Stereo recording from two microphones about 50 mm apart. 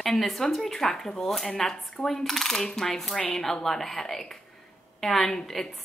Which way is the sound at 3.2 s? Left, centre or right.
Centre.